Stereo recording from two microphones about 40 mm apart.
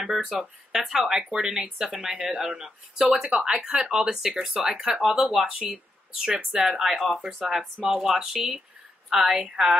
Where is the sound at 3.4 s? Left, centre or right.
Right.